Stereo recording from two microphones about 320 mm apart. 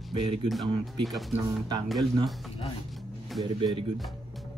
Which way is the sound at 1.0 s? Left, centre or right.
Centre.